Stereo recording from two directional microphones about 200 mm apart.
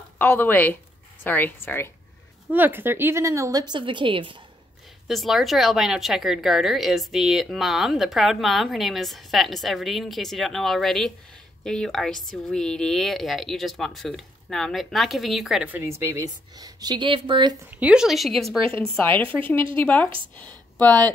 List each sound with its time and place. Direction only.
0.2 s speech: 10° left (ahead or behind)
2.5 s a woman's voice: 10° right (ahead or behind)
5.0 s a woman's voice: centre (ahead or behind); by 17.6 s 25° right (ahead or behind)
17.6 s a woman's voice: 5° right (ahead or behind)
18.9 s speech: 10° left (ahead or behind)
20.8 s speech: 20° right (ahead or behind)